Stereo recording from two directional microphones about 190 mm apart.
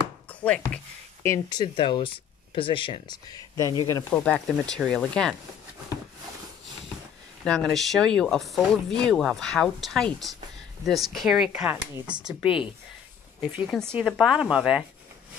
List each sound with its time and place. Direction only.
0.3 s a sound: 5° left (ahead or behind)
1.2 s speech: 20° left (ahead or behind)
4.2 s speech: 5° left (ahead or behind)
7.4 s speech: 5° left (ahead or behind)
13.4 s speech: centre (ahead or behind)